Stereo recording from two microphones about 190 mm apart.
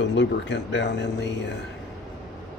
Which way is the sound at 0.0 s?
70° left (ahead or behind).